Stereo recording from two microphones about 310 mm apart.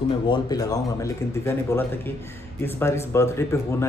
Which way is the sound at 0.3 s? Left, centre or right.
Centre.